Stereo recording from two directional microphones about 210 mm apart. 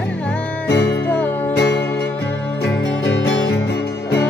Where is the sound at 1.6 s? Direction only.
50° left (ahead or behind).